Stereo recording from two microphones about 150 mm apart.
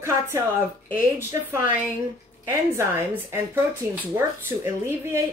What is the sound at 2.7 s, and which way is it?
Speech, 15° right (ahead or behind).